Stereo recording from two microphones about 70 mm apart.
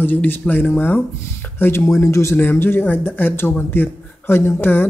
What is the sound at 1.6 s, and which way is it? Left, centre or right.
Speech, left.